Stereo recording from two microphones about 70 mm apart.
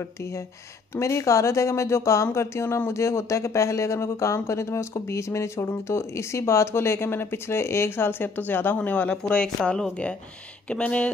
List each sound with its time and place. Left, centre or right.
0.0 s speech: left; by 11.1 s centre